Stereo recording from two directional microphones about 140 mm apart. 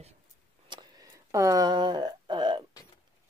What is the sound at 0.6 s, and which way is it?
Vehicle, 35° right (ahead or behind).